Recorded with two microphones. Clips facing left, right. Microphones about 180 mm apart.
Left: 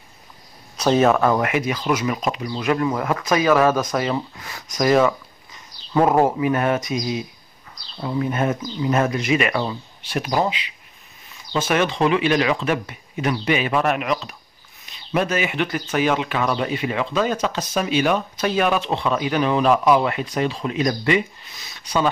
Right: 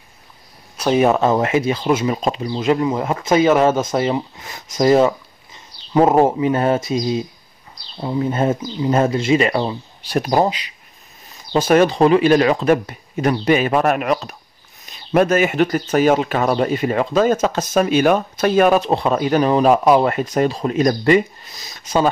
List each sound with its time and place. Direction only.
0.7 s speech: 5° right (ahead or behind)
1.0 s speech: 20° right (ahead or behind); by 22.1 s 40° right (ahead or behind)